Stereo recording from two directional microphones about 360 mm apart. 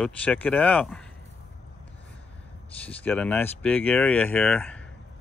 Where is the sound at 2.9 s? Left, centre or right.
Centre.